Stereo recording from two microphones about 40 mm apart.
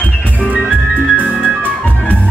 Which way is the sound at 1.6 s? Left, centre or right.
Left.